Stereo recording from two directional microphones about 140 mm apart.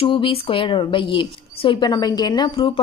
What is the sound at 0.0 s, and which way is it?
A woman's voice, 40° left (ahead or behind).